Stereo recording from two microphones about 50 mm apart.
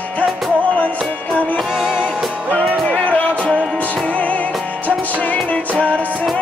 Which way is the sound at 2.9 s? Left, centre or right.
Left.